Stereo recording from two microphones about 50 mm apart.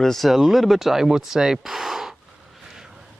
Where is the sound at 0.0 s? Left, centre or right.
Centre.